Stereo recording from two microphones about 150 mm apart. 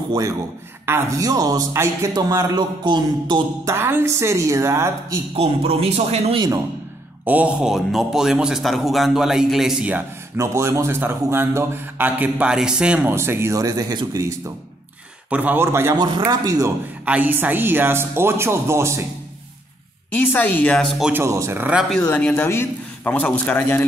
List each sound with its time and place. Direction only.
0.8 s a man's voice: 20° right (ahead or behind)
3.7 s a man's voice: 15° right (ahead or behind)
5.3 s a man's voice: 40° right (ahead or behind)
7.2 s a man's voice: 10° right (ahead or behind)
13.1 s a man's voice: 15° right (ahead or behind)
15.2 s a man's voice: 10° right (ahead or behind)
17.0 s a man's voice: 10° right (ahead or behind)
20.1 s a man's voice: 10° left (ahead or behind)
21.1 s a man's voice: 20° right (ahead or behind)
21.9 s a man's voice: 5° left (ahead or behind)